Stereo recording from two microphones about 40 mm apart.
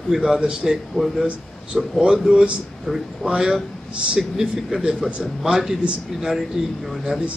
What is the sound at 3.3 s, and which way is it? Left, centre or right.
Speech, centre.